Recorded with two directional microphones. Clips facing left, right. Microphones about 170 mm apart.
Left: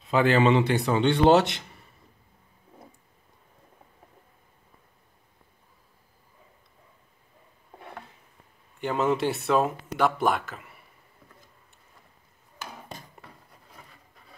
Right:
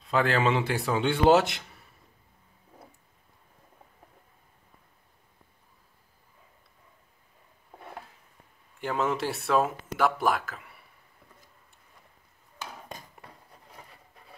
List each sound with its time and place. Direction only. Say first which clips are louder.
0.0 s speech: left 4 dB; centre (ahead or behind)
8.8 s speech: left 4 dB; centre (ahead or behind)